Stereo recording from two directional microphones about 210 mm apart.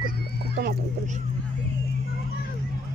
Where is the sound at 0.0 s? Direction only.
45° right (ahead or behind).